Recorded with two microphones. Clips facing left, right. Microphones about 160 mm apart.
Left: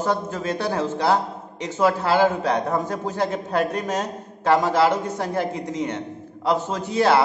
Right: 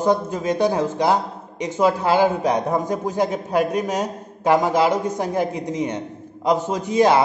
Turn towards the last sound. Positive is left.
turn(degrees=-15)  # may be behind; listen again after turning